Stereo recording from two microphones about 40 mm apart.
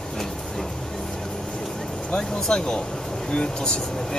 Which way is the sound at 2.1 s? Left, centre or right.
Centre.